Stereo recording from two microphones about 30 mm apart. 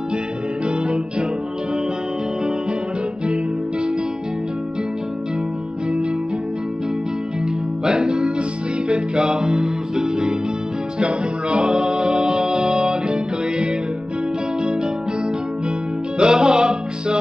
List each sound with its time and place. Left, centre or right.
0.7 s music: right
7.8 s music: right
11.0 s music: right
16.2 s music: right